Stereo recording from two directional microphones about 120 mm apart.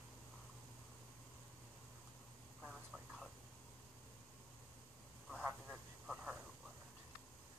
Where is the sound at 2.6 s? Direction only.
Centre (ahead or behind).